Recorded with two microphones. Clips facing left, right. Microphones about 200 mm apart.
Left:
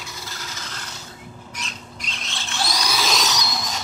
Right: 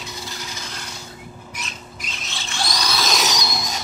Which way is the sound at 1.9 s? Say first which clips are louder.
Even; centre (ahead or behind).